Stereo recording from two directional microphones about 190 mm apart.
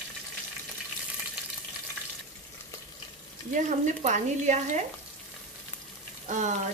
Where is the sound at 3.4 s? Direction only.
40° right (ahead or behind).